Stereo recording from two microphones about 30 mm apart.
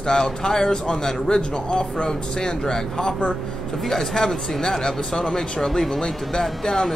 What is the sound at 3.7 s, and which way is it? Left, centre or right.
Speech, centre.